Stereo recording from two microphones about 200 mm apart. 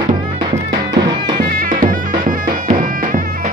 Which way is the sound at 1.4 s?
50° right (ahead or behind).